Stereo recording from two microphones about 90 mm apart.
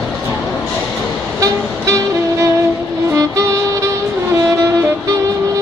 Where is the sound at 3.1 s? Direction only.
35° right (ahead or behind).